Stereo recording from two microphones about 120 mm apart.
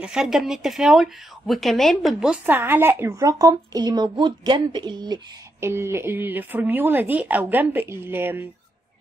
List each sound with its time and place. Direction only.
0.0 s speech: 5° right (ahead or behind)
2.4 s a woman's voice: 15° right (ahead or behind); by 5.2 s 35° right (ahead or behind)
5.6 s speech: 20° right (ahead or behind)